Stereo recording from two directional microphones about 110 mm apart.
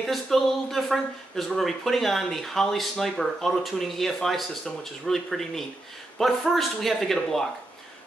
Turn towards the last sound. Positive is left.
turn(degrees=0)  # may be behind; listen again after turning